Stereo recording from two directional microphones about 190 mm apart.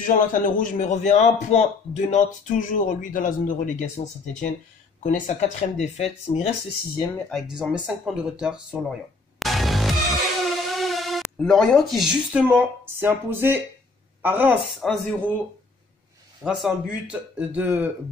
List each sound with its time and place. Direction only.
0.0 s a man's voice: 45° left (ahead or behind)
7.2 s speech: centre (ahead or behind)
9.4 s music: centre (ahead or behind)
14.2 s speech: 10° right (ahead or behind)
16.4 s speech: 5° right (ahead or behind)